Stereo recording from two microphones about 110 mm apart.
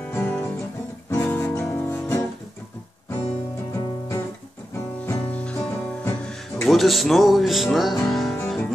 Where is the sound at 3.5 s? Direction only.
25° left (ahead or behind).